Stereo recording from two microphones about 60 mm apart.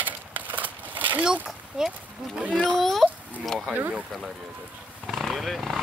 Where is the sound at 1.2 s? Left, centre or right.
Centre.